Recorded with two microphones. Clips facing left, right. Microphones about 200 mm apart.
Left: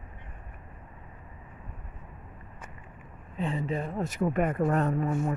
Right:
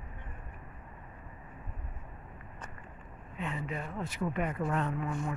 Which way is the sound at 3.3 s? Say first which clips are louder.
Left 7 dB; 30° left (ahead or behind).